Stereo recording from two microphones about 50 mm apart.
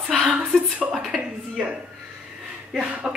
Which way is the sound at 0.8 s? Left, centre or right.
Centre.